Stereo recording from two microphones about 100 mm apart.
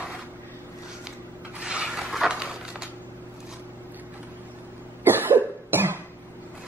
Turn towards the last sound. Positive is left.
turn(degrees=-20)  # may be behind; listen again after turning